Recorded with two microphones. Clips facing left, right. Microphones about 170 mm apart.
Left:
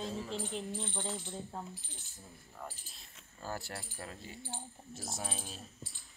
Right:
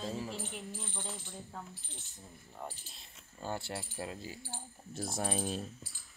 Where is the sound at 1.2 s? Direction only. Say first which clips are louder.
Left 4 dB; 20° left (ahead or behind).